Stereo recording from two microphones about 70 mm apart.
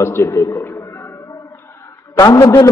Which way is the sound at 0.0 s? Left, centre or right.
Left.